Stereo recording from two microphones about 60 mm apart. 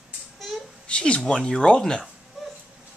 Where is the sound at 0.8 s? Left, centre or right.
Centre.